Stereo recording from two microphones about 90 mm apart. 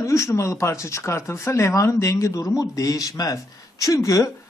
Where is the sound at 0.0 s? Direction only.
35° left (ahead or behind).